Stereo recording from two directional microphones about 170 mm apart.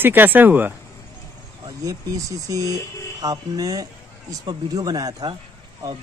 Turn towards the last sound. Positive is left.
turn(degrees=-25)  # may be behind; listen again after turning